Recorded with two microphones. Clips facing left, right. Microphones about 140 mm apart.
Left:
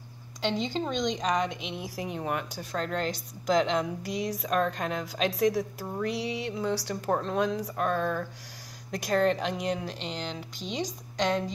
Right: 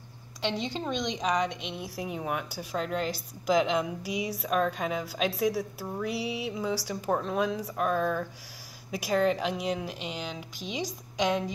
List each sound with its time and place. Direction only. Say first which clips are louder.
0.4 s a woman's voice: left 2 dB; centre (ahead or behind)